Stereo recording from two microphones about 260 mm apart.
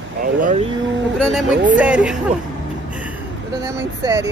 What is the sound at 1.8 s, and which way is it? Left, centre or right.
Speech, centre.